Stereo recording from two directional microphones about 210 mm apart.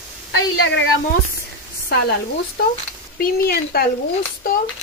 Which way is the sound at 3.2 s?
45° left (ahead or behind).